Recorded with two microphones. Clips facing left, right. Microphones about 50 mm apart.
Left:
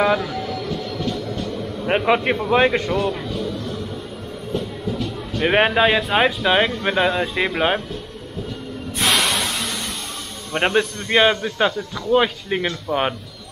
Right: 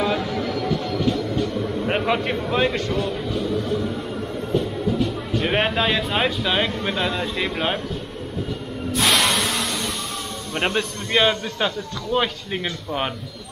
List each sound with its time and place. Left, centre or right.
0.1 s train: centre
0.7 s music: centre
1.9 s a man's voice: centre
2.9 s music: centre
4.6 s a sound: centre
5.4 s a man's voice: centre
9.1 s a sound: centre
10.5 s a man's voice: centre